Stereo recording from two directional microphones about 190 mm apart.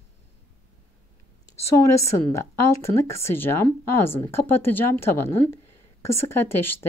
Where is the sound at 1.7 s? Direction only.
15° left (ahead or behind).